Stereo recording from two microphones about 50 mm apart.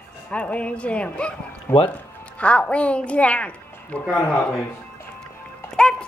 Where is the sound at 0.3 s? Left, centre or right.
Left.